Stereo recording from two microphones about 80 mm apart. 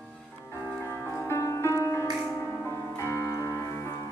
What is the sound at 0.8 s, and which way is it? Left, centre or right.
Music, left.